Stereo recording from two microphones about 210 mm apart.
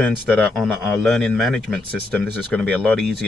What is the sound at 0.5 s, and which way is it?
Speech, centre (ahead or behind).